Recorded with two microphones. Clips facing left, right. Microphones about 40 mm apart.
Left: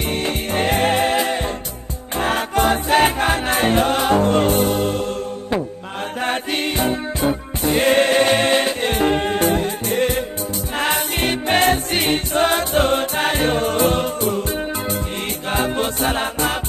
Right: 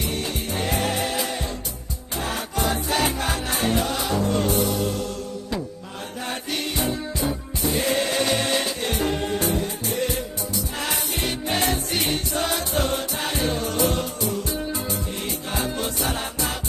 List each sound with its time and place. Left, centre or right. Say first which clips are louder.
0.0 s music: left 5 dB; left
15.5 s music: left 7 dB; left